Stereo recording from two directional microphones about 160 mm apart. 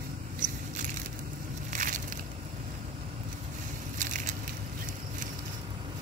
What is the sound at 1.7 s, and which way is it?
Crushing, 55° right (ahead or behind).